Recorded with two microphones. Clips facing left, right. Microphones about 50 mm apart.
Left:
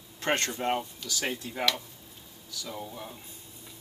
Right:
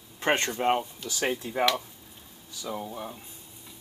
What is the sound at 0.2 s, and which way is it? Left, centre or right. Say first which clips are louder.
Speech: right 3 dB; right.